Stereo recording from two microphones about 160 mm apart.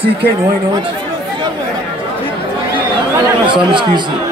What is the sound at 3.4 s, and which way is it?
Speech, 30° right (ahead or behind).